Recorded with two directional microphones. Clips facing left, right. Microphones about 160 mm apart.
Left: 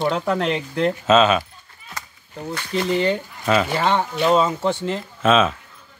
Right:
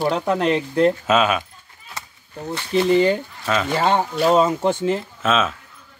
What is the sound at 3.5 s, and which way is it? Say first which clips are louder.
Speech: even; 5° left (ahead or behind).